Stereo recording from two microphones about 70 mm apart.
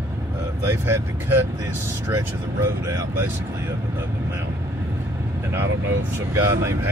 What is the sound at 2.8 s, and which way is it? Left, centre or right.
Speech, right.